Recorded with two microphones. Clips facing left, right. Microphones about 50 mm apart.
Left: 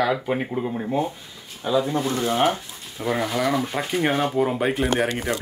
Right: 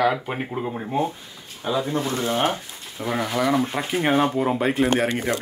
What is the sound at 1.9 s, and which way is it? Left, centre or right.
Speech, right.